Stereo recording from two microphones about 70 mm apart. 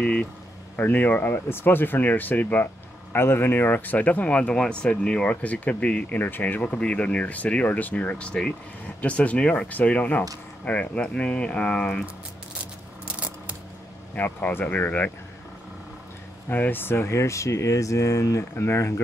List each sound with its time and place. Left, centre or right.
0.0 s speech: centre
6.1 s speech: left; by 12.1 s centre
13.0 s a sound: right
14.1 s speech: left
16.4 s speech: left